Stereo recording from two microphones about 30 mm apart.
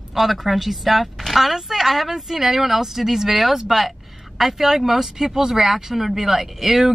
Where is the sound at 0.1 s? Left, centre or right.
Centre.